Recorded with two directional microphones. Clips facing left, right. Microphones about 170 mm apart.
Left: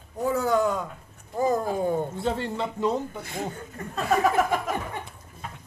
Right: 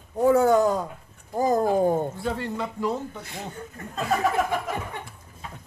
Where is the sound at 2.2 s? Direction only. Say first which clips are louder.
Left 1 dB; 25° left (ahead or behind).